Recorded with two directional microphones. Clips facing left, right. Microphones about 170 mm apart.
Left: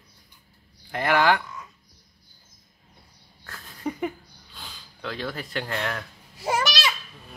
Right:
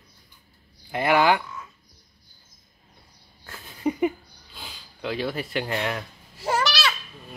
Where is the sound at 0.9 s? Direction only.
5° right (ahead or behind).